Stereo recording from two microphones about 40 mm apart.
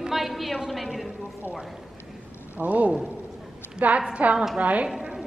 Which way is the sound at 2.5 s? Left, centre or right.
Right.